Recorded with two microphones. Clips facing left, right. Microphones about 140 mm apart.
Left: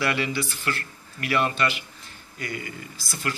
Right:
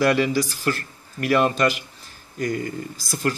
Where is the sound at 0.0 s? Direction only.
40° right (ahead or behind).